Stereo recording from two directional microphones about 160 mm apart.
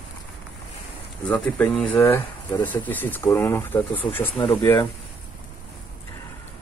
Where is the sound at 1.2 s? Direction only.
10° left (ahead or behind).